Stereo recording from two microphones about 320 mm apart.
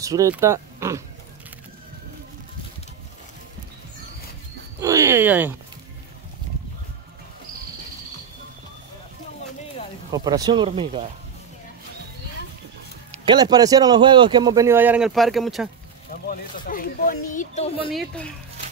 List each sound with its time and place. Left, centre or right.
0.0 s a man's voice: centre
4.7 s a sound: centre
10.1 s a man's voice: centre
13.1 s a man's voice: centre
16.1 s speech: left